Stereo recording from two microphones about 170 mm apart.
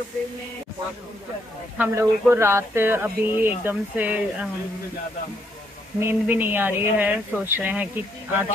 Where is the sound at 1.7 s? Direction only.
15° right (ahead or behind).